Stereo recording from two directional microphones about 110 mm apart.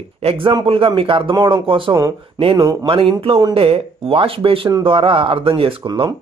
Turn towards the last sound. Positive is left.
turn(degrees=-50)  # may be behind; listen again after turning